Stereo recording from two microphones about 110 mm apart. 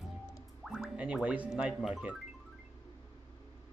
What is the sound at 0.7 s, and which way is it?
Speech, 10° right (ahead or behind).